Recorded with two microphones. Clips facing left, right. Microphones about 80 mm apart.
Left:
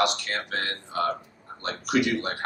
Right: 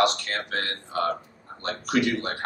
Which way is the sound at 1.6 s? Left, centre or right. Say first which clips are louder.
Even; centre.